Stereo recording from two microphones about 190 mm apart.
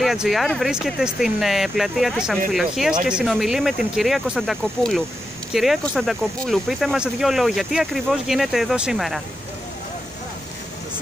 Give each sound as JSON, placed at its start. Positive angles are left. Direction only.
{"t": 0.0, "sound": "speech", "side_deg": 0}